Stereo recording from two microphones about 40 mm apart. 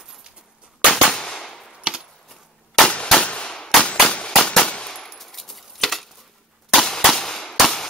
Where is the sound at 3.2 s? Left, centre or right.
Left.